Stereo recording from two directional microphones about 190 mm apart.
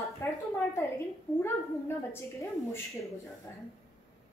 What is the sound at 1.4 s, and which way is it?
A woman's voice, 10° left (ahead or behind).